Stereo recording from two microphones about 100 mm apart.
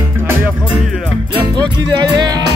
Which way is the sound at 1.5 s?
45° right (ahead or behind).